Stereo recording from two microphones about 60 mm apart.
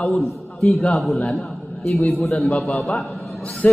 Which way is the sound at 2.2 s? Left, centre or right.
Centre.